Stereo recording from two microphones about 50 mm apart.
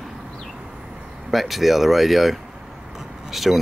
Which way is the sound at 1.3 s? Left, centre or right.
Centre.